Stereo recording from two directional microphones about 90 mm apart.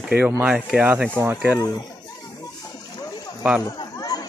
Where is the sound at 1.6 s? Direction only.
45° left (ahead or behind).